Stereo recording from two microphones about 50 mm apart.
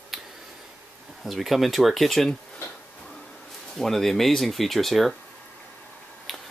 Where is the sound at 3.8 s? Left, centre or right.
Centre.